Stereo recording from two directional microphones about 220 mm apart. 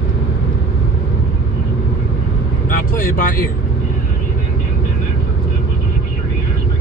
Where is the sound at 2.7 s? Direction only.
40° left (ahead or behind).